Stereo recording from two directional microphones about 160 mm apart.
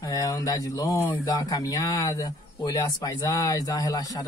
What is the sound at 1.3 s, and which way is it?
A man's voice, 25° left (ahead or behind).